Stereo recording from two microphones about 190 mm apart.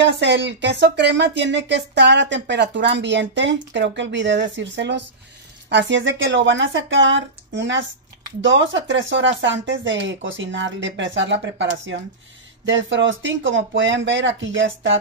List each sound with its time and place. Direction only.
0.0 s speech: 70° right (ahead or behind)
12.6 s speech: 75° right (ahead or behind)